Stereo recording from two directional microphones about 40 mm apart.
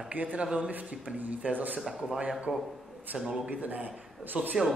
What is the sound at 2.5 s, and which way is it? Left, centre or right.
Speech, right.